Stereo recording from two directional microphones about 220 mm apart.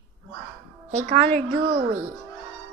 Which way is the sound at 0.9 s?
30° right (ahead or behind).